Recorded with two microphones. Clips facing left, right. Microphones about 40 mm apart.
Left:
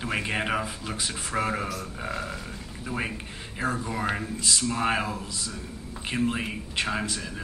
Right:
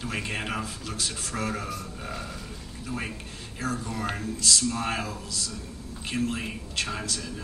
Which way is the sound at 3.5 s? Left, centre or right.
Left.